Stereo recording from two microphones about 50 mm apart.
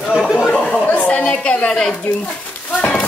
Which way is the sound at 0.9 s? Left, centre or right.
Left.